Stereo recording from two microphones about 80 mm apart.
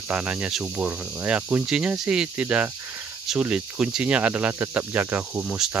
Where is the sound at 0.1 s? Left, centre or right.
Centre.